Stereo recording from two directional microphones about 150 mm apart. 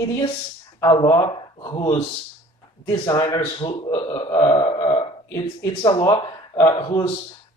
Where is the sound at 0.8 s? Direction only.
30° left (ahead or behind).